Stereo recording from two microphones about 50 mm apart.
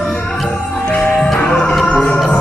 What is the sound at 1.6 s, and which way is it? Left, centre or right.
Music, centre.